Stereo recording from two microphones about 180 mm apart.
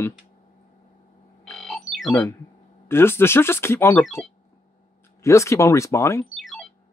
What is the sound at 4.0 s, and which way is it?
Speech, centre (ahead or behind).